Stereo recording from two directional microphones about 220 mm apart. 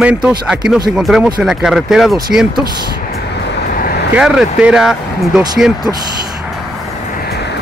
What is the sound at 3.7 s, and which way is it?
Vehicle, 40° left (ahead or behind).